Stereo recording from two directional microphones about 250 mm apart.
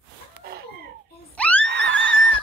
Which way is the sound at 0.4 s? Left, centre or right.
Right.